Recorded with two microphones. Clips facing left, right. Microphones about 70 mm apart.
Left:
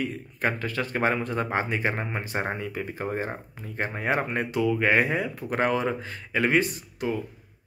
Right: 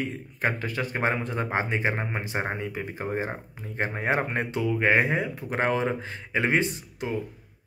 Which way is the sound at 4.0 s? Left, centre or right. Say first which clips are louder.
Even; right.